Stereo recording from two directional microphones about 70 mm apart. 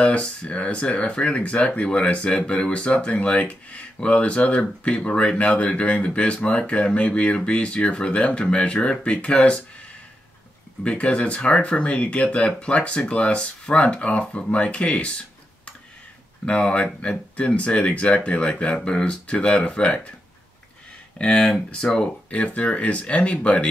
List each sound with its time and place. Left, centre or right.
0.0 s speech: centre
10.8 s speech: centre
16.4 s speech: centre
21.2 s speech: centre